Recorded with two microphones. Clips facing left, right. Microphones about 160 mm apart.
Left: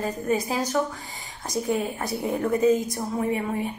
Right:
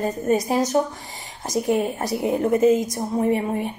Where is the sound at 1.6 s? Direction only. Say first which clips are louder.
Right 4 dB; 75° right (ahead or behind).